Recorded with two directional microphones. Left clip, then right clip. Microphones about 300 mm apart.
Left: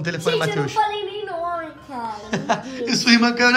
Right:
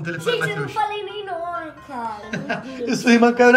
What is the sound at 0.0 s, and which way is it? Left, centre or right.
Speech, centre.